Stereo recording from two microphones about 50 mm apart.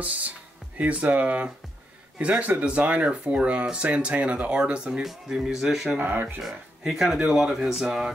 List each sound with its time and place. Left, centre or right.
0.7 s speech: right
5.0 s speech: centre
5.9 s speech: right
6.8 s speech: centre
7.2 s speech: centre
7.4 s speech: centre